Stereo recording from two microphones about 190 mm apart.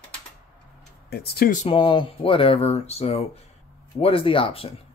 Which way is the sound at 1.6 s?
30° left (ahead or behind).